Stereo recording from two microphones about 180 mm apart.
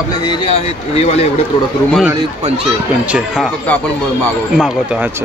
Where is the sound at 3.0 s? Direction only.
5° right (ahead or behind).